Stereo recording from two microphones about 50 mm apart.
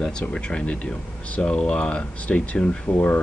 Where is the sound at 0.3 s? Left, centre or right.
Left.